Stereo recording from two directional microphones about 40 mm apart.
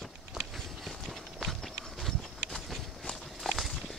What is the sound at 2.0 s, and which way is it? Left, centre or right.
Clip-clop, centre.